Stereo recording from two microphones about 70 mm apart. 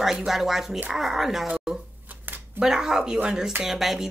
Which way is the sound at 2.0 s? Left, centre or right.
Right.